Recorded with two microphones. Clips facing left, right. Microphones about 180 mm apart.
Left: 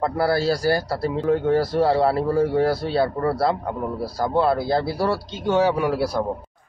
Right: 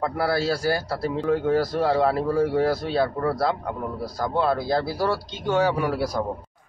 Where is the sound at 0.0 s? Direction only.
35° left (ahead or behind).